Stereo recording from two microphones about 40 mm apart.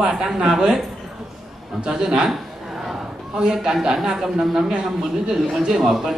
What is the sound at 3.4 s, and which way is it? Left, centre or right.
A man's voice, centre.